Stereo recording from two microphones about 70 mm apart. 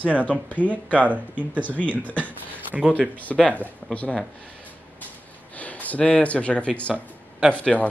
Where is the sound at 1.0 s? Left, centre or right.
Right.